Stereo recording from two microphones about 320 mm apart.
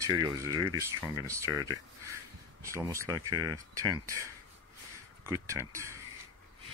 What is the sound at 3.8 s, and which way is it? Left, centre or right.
Speech, centre.